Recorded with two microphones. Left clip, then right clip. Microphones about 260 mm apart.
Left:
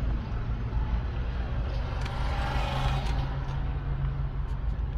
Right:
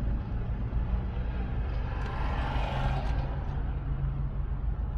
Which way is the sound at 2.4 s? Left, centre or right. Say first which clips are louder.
Left 4 dB; right.